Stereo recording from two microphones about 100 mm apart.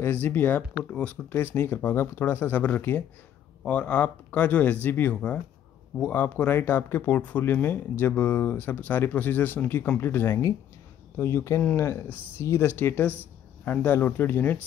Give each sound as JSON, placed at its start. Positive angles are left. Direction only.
{"t": 0.0, "sound": "speech", "side_deg": 20}